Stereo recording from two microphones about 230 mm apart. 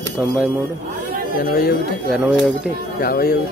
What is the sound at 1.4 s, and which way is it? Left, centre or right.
Speech, left.